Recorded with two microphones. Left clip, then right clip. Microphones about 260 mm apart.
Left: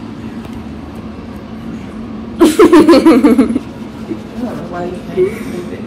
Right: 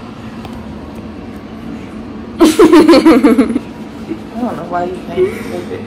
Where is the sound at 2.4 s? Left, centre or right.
Centre.